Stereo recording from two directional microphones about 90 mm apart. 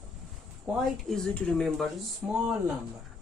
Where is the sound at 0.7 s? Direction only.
5° right (ahead or behind).